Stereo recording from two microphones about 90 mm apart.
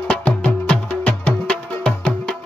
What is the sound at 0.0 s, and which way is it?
Music, 10° left (ahead or behind).